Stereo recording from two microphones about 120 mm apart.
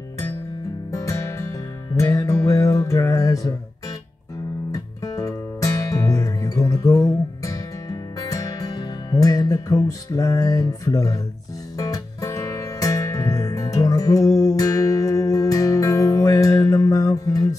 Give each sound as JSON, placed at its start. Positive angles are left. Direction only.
{"t": 0.9, "sound": "music", "side_deg": 25}
{"t": 4.7, "sound": "music", "side_deg": 30}